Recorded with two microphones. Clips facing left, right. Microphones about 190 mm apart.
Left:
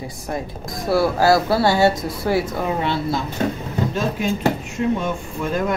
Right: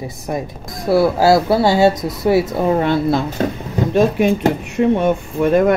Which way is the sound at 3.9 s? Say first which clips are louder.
Right 12 dB; 65° right (ahead or behind).